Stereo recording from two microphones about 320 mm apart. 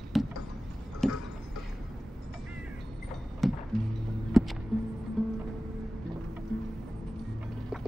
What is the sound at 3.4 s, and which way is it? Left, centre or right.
Music, centre.